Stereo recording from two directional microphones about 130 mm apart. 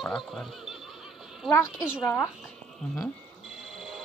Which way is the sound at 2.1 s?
Centre (ahead or behind).